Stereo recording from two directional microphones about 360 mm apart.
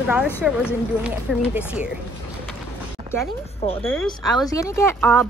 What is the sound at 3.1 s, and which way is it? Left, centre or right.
A woman's voice, centre.